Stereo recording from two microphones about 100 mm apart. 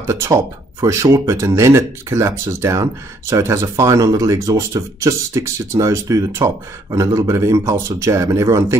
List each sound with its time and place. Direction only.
0.0 s speech: 30° right (ahead or behind)